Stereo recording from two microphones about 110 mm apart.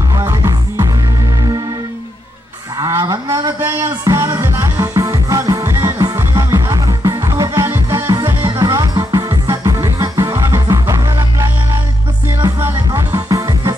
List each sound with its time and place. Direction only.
0.1 s music: 30° right (ahead or behind)
3.3 s music: 25° right (ahead or behind)
12.7 s music: 30° right (ahead or behind)